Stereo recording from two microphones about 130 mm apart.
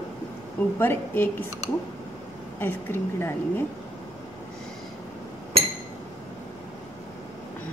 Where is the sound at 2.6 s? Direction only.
15° left (ahead or behind).